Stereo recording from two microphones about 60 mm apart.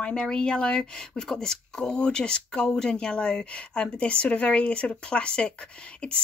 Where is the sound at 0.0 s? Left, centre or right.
Centre.